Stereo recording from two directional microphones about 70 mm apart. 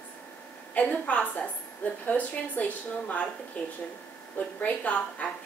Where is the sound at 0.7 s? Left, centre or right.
Left.